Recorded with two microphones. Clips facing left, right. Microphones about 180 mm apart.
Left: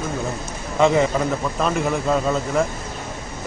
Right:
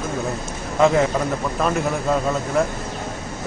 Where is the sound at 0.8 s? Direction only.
Centre (ahead or behind).